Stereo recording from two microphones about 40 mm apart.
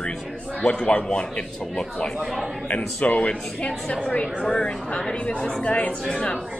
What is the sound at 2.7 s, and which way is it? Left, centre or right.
A woman's voice, left.